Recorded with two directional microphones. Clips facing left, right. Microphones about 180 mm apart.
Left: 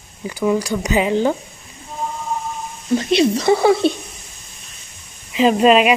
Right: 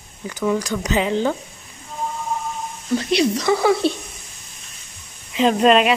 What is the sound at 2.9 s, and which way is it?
Speech, 25° left (ahead or behind).